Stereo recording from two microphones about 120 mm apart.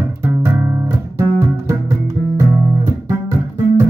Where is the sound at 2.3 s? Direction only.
20° right (ahead or behind).